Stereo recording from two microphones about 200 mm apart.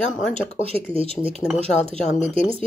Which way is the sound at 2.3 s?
25° right (ahead or behind).